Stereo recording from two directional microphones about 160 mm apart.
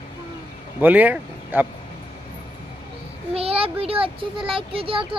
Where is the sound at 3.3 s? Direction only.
35° right (ahead or behind).